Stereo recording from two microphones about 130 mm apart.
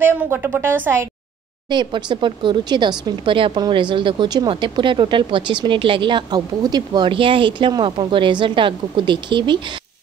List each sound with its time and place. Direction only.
0.0 s speech: 15° right (ahead or behind)
1.7 s speech: 35° right (ahead or behind)